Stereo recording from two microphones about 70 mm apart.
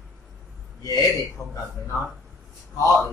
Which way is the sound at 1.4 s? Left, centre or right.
Left.